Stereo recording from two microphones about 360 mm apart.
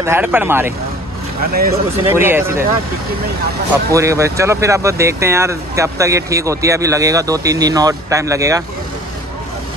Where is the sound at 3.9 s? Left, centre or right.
Centre.